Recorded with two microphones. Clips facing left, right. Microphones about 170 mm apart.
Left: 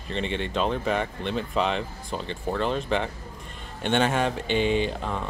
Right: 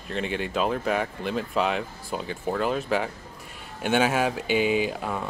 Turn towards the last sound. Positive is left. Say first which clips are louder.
# even
turn(degrees=-10)  # may be behind; listen again after turning